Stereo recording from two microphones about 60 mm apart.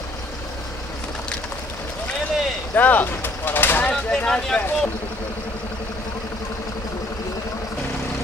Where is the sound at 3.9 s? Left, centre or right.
Centre.